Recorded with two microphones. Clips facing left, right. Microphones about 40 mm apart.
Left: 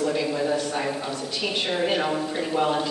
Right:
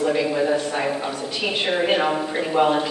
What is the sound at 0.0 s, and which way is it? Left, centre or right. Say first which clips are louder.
A woman's voice: right 4 dB; right.